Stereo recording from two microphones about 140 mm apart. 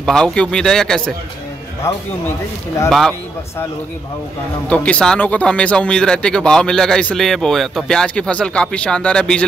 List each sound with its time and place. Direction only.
0.0 s a man's voice: 5° left (ahead or behind)
2.9 s a man's voice: centre (ahead or behind)
4.6 s speech: 10° left (ahead or behind)